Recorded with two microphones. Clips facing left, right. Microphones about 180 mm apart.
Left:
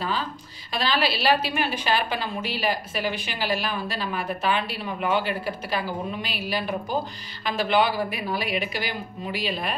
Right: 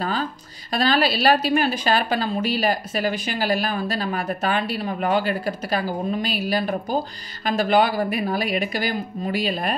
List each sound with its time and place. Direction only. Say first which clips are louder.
0.0 s a woman's voice: right 3 dB; 45° right (ahead or behind)